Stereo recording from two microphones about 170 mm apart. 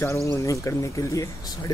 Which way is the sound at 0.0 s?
15° left (ahead or behind).